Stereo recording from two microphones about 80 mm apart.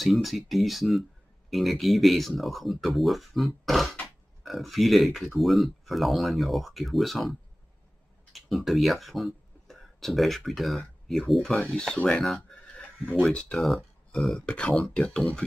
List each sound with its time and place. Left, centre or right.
0.0 s speech: centre
11.6 s speech: centre
12.2 s a sound: centre
13.2 s speech: centre
13.6 s speech: centre